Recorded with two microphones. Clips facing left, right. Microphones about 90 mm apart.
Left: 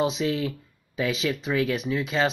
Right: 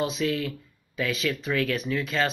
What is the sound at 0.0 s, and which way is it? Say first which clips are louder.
Speech: left 2 dB; 25° left (ahead or behind).